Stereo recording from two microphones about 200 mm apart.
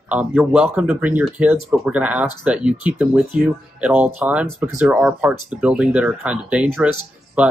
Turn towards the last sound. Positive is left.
turn(degrees=-5)  # may be behind; listen again after turning